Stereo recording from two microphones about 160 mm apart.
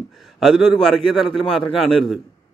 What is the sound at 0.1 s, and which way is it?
A man's voice, centre (ahead or behind).